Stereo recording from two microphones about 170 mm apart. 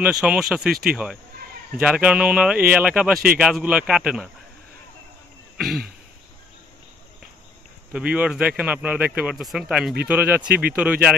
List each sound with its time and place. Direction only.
0.0 s speech: 5° right (ahead or behind)
7.9 s speech: 5° right (ahead or behind)